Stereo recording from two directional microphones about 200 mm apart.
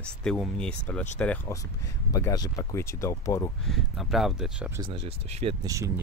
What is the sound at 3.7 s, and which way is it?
Speech, centre (ahead or behind).